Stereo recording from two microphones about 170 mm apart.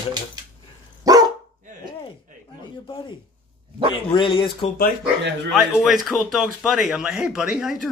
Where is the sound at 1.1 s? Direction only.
20° right (ahead or behind).